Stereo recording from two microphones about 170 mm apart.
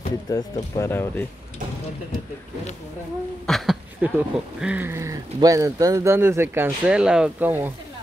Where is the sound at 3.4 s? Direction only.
Centre (ahead or behind).